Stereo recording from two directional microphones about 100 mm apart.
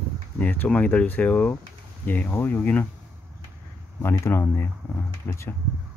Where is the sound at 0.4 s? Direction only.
15° left (ahead or behind).